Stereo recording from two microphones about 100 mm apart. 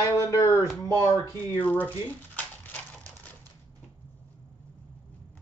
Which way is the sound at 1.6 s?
15° left (ahead or behind).